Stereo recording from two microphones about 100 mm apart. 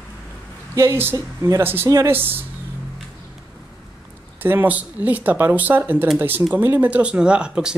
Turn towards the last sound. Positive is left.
turn(degrees=-10)  # may be behind; listen again after turning